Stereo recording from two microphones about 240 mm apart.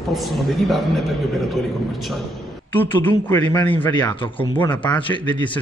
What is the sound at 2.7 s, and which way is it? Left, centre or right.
Speech, centre.